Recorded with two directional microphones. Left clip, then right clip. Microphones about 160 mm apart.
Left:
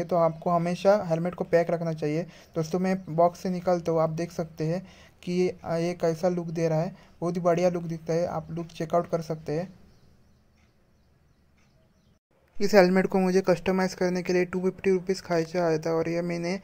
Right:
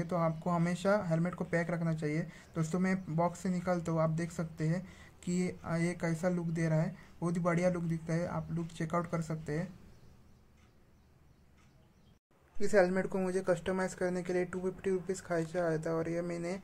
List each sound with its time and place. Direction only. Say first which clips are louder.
0.0 s speech: left 10 dB; 35° left (ahead or behind)
12.5 s speech: left 8 dB; 35° left (ahead or behind)